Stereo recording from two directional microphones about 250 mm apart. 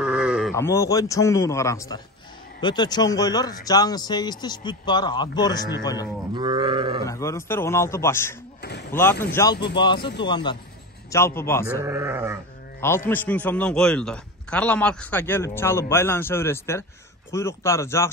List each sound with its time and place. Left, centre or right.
0.0 s sheep: centre
0.6 s a man's voice: centre
6.3 s livestock: centre
7.1 s a man's voice: centre
8.5 s speech: left
9.3 s a man's voice: centre
9.9 s speech: left
10.2 s a man's voice: centre
11.8 s livestock: centre
12.8 s a man's voice: centre